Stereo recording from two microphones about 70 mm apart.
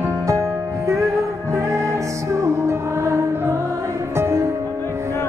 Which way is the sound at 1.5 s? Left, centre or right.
Right.